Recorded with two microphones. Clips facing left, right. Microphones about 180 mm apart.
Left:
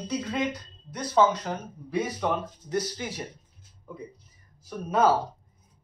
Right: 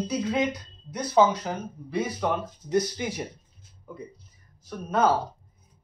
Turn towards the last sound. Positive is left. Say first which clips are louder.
# left 1 dB
turn(degrees=5)  # may be behind; listen again after turning